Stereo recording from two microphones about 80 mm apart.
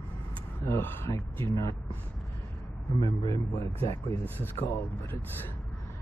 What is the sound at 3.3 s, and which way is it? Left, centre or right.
Speech, left.